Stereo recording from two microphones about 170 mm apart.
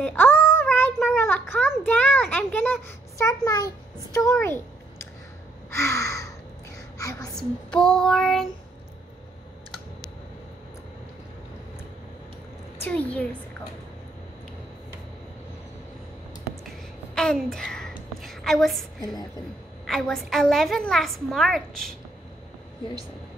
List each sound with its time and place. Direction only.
0.0 s child singing: 10° left (ahead or behind)
1.2 s a child's voice: 15° left (ahead or behind)
4.4 s a sound: 15° left (ahead or behind)
7.3 s a woman's voice: 5° left (ahead or behind)
12.8 s a woman's voice: 10° left (ahead or behind)
16.6 s a sound: 5° left (ahead or behind)
19.9 s a woman's voice: centre (ahead or behind)